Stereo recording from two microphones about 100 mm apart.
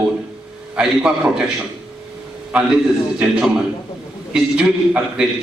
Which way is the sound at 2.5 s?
10° right (ahead or behind).